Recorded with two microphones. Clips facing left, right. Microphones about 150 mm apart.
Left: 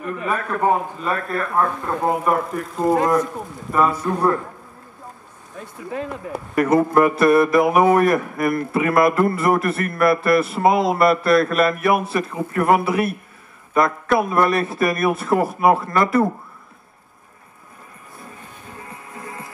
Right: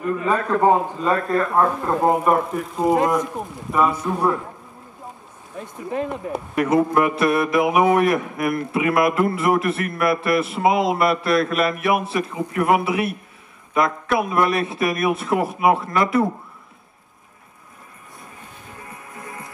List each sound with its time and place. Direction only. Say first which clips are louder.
0.0 s a man's voice: right 3 dB; 20° right (ahead or behind)
2.5 s a man's voice: even; 5° right (ahead or behind)
5.6 s a man's voice: right 3 dB; 20° right (ahead or behind)
6.5 s a man's voice: left 2 dB; 5° right (ahead or behind)
19.1 s music: left 2 dB; 25° left (ahead or behind)